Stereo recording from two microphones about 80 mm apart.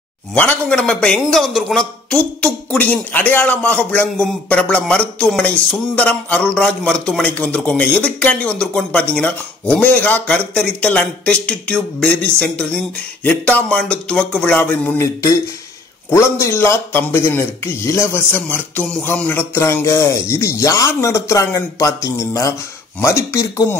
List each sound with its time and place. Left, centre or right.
0.4 s a man's voice: centre
2.8 s a man's voice: left
16.1 s a man's voice: left; by 19.4 s centre
19.5 s speech: left